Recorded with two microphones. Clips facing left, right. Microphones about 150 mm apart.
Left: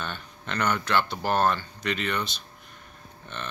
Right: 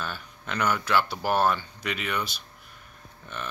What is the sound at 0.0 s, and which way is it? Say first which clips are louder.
Speech: even; 5° right (ahead or behind).